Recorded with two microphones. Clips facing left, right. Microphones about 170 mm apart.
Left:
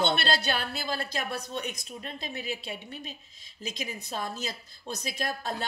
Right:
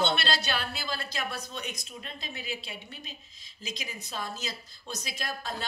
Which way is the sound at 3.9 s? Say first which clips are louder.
Left 3 dB; 55° left (ahead or behind).